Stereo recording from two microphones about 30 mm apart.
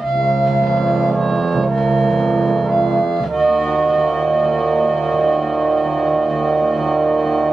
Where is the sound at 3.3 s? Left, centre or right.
Centre.